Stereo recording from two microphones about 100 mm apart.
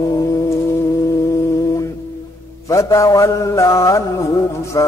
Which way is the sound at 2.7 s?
35° left (ahead or behind).